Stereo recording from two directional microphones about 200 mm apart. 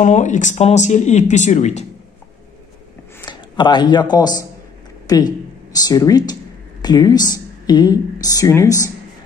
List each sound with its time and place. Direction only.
0.0 s speech: 35° left (ahead or behind)
3.3 s a man's voice: 25° left (ahead or behind)